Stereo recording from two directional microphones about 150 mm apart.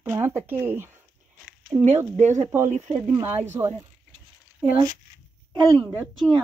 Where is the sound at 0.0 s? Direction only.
15° right (ahead or behind).